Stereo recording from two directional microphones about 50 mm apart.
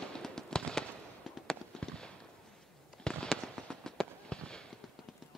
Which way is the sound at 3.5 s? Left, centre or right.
Centre.